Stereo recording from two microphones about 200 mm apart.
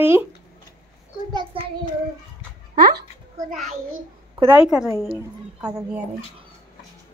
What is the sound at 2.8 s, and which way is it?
Speech, 50° right (ahead or behind).